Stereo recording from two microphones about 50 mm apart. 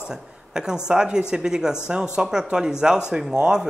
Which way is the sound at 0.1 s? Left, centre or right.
Centre.